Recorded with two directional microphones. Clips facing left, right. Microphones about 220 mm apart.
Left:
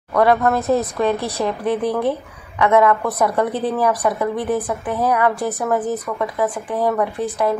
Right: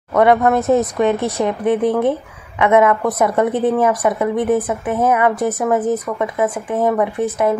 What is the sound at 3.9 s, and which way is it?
Speech, centre (ahead or behind).